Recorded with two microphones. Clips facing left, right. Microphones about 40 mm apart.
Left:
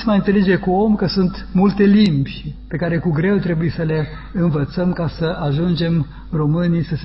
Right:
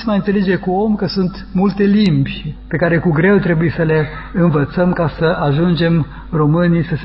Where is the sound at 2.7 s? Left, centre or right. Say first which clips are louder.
Right 6 dB; right.